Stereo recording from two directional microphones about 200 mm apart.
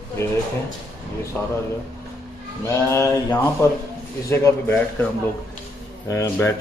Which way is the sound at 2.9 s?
15° left (ahead or behind).